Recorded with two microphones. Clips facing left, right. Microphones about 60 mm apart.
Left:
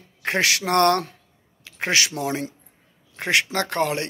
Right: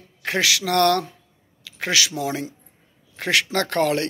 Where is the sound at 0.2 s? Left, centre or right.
Left.